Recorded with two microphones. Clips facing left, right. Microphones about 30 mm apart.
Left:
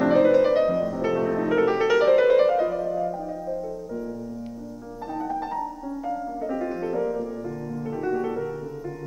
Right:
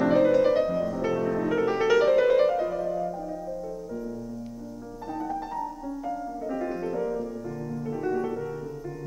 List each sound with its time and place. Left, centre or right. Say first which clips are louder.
0.0 s music: left 2 dB; centre
5.1 s music: left 3 dB; centre